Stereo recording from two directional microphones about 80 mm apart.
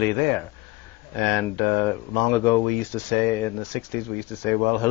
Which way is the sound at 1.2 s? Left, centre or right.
Left.